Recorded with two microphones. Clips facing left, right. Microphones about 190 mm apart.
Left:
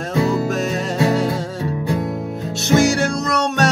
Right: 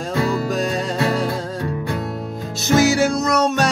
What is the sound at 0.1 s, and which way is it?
Music, 20° left (ahead or behind).